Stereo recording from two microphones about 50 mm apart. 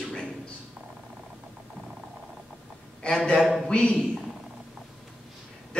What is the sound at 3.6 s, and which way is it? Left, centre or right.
Speech, centre.